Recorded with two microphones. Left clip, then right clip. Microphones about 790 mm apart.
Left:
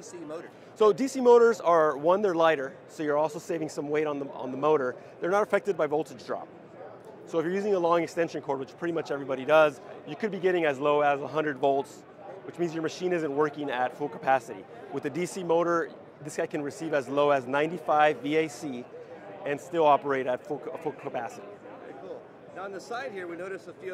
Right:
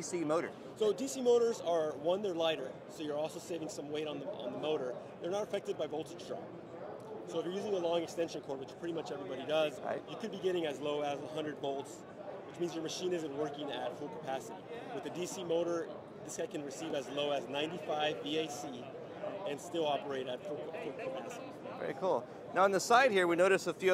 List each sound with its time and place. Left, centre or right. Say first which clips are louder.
0.1 s speech: right 6 dB; right
0.7 s speech: left 11 dB; left
4.6 s speech: left 13 dB; left
7.3 s speech: left 10 dB; left
12.6 s speech: left 8 dB; left
19.4 s speech: left 13 dB; left
22.0 s a man's voice: right 8 dB; right